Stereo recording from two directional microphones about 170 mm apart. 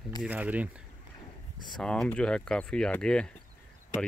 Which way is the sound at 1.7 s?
5° left (ahead or behind).